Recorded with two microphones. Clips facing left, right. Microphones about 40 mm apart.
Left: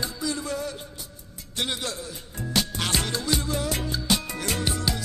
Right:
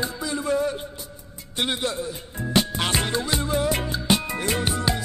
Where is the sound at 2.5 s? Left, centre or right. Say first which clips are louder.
Right 4 dB; right.